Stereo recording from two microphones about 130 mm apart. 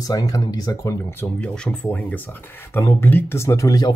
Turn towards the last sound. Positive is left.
turn(degrees=25)  # may be behind; listen again after turning